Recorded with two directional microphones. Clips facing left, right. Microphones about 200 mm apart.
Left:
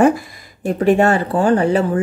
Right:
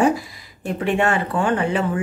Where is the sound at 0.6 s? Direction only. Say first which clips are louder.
Left 7 dB; 40° left (ahead or behind).